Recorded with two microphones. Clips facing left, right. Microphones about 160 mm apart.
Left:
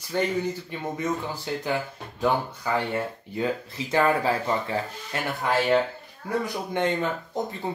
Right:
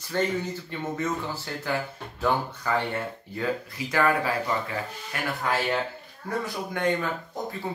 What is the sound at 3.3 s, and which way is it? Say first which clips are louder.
Speech: left 2 dB; 25° left (ahead or behind).